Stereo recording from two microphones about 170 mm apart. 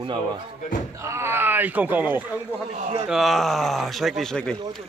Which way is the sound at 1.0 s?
15° right (ahead or behind).